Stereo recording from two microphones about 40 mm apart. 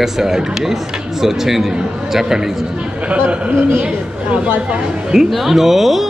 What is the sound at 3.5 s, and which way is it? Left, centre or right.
Speech, right.